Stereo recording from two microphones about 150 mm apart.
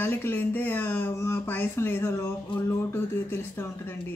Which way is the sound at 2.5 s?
35° left (ahead or behind).